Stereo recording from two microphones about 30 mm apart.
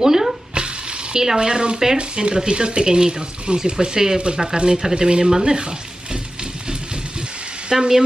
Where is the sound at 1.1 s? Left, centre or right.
Right.